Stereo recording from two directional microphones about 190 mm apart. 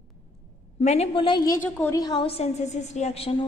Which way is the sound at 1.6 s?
10° left (ahead or behind).